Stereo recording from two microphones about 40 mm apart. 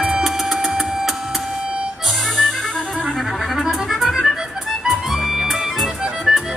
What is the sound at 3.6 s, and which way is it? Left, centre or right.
Music, centre.